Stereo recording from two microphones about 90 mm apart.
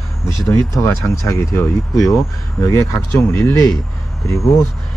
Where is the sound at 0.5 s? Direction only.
30° left (ahead or behind).